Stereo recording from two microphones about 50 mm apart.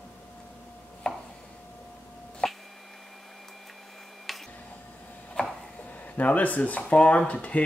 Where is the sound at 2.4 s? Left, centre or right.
Centre.